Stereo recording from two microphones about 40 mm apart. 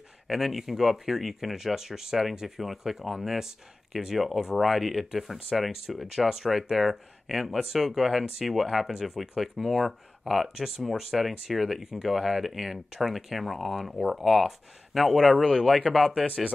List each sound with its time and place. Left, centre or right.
0.3 s speech: centre
15.9 s speech: left